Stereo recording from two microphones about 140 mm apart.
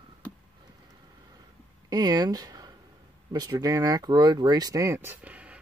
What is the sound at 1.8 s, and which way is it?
Speech, 30° right (ahead or behind).